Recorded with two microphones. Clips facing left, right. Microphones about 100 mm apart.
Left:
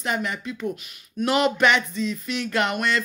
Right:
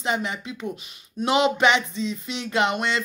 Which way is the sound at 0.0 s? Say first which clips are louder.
Even; 20° right (ahead or behind).